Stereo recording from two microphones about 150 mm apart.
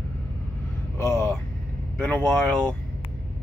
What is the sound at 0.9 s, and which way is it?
Vehicle, 15° left (ahead or behind).